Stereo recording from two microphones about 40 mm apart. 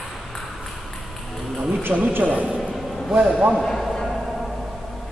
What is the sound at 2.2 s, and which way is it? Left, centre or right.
Speech, right.